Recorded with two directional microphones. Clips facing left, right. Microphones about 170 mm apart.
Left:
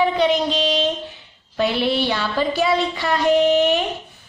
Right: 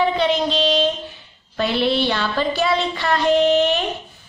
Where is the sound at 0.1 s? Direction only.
15° left (ahead or behind).